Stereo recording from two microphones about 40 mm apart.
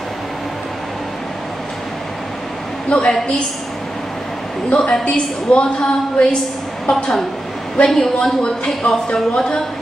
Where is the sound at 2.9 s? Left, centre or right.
Left.